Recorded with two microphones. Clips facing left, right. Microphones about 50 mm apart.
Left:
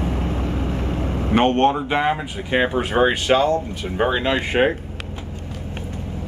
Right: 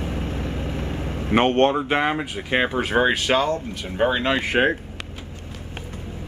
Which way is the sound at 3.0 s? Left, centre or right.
Centre.